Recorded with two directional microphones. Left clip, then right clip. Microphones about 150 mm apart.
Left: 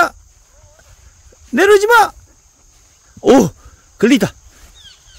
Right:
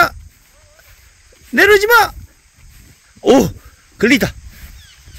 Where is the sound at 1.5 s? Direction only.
15° left (ahead or behind).